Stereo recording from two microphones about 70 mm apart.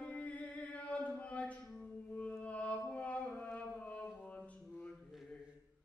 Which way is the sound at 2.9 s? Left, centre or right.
Centre.